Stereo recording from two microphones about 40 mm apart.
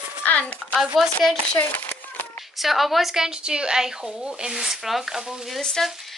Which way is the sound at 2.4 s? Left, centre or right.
Centre.